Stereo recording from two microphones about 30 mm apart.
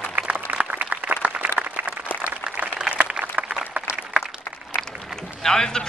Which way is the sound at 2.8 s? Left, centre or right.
Right.